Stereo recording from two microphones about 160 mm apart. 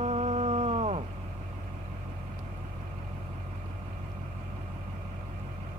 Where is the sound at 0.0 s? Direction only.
40° right (ahead or behind).